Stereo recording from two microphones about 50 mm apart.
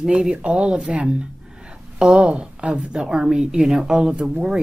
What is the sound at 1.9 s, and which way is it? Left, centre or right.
A woman's voice, centre.